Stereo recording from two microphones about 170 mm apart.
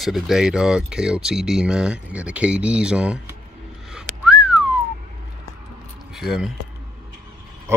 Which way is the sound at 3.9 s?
5° right (ahead or behind).